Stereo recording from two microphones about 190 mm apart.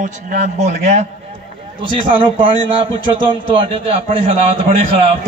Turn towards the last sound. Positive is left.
turn(degrees=-30)  # may be behind; listen again after turning